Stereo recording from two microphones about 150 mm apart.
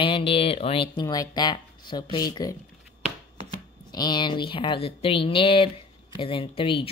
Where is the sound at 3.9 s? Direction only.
30° left (ahead or behind).